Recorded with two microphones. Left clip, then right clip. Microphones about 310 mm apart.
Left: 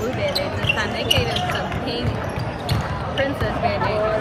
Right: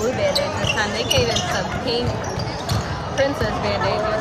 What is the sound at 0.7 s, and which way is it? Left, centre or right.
Basketball bounce, right.